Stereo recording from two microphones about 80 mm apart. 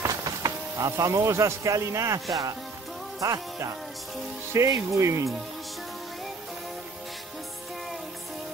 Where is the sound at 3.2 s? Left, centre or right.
Right.